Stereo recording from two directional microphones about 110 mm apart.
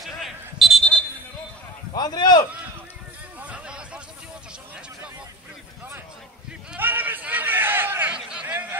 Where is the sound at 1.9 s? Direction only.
40° left (ahead or behind).